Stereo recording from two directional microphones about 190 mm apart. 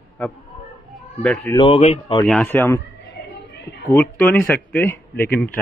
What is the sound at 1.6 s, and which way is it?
Speech, 30° left (ahead or behind).